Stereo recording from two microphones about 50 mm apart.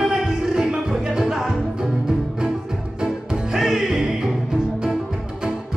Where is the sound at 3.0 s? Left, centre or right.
Centre.